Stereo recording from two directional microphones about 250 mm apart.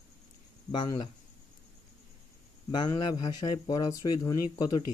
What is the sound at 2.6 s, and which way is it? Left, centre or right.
A man's voice, centre.